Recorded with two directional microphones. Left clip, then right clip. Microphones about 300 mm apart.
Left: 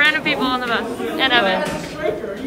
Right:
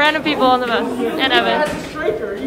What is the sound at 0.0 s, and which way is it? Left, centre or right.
A man's voice, centre.